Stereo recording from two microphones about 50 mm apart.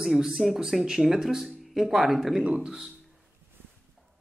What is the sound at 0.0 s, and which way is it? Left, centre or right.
Speech, centre.